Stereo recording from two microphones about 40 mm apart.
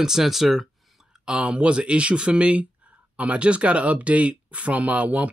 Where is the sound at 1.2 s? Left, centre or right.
Right.